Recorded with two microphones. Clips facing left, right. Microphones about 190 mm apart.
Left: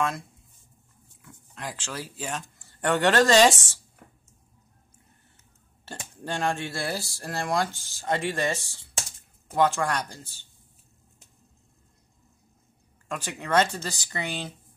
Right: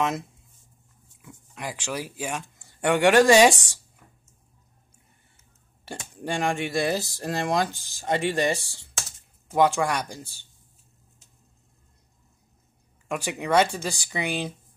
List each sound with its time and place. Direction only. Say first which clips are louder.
1.5 s speech: right 4 dB; 10° right (ahead or behind)
5.9 s speech: right 3 dB; 15° right (ahead or behind)
13.1 s speech: right 2 dB; 15° right (ahead or behind)